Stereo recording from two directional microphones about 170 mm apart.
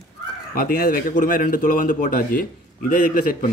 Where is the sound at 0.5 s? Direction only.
60° left (ahead or behind).